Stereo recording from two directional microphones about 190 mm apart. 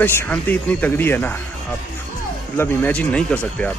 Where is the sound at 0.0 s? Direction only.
10° left (ahead or behind).